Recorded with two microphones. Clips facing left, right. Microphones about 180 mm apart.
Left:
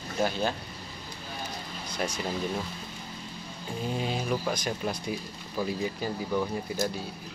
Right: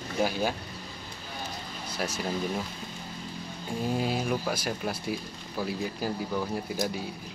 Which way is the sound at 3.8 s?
5° right (ahead or behind).